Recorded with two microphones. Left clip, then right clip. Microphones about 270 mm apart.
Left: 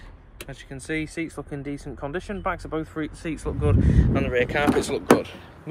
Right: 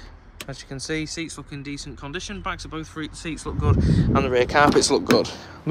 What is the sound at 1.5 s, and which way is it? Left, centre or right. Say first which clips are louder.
Speech: left 1 dB; centre.